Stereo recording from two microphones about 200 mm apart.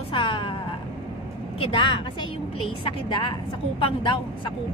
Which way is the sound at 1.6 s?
25° left (ahead or behind).